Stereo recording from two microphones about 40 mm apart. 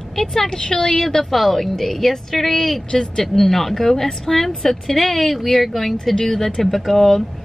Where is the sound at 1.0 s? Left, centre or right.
Centre.